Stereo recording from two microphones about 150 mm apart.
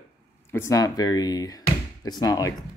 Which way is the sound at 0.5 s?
20° left (ahead or behind).